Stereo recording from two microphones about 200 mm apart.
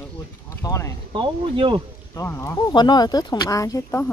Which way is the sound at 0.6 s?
15° left (ahead or behind).